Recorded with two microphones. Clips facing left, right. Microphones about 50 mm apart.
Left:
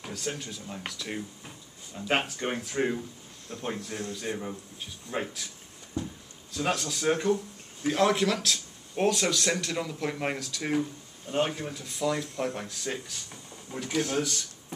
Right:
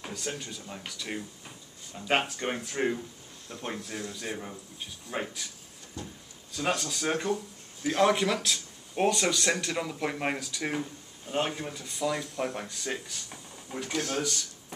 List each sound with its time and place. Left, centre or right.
0.0 s a sound: centre
0.4 s speech: centre
3.6 s speech: centre
6.0 s speech: centre
6.5 s speech: centre
13.9 s speech: centre